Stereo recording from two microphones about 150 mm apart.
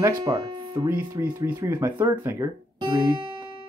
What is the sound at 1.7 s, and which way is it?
Speech, 15° right (ahead or behind).